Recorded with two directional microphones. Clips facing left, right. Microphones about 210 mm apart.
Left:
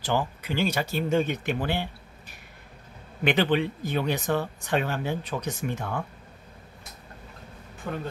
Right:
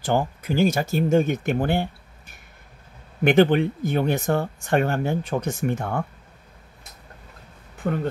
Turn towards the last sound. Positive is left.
turn(degrees=-60)  # may be behind; listen again after turning